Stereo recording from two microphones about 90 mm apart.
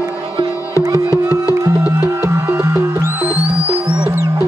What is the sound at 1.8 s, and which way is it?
Music, 25° right (ahead or behind).